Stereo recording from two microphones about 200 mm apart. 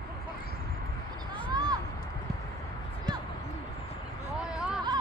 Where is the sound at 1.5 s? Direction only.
20° right (ahead or behind).